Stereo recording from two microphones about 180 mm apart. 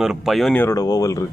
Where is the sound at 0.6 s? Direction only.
20° left (ahead or behind).